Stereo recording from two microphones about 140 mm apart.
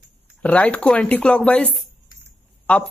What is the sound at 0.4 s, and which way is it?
Speech, 10° left (ahead or behind).